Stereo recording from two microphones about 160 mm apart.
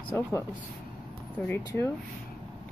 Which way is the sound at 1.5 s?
15° left (ahead or behind).